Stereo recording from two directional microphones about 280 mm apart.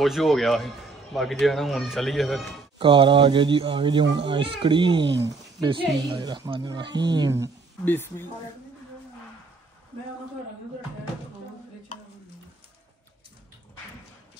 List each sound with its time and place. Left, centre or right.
0.0 s a man's voice: centre
2.8 s speech: centre
7.8 s a woman's voice: centre